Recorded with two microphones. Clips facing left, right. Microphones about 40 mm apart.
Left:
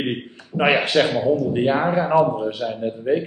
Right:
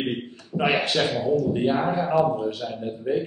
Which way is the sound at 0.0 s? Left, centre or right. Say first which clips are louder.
Left 2 dB; left.